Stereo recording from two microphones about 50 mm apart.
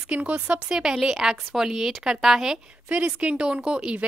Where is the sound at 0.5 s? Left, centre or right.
Centre.